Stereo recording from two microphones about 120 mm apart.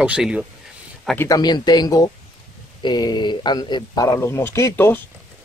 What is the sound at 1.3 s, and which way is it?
Speech, 35° left (ahead or behind).